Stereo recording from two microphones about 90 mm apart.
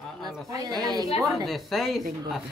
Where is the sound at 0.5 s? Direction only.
40° right (ahead or behind).